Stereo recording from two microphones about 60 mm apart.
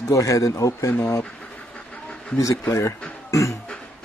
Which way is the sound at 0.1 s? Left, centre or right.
Left.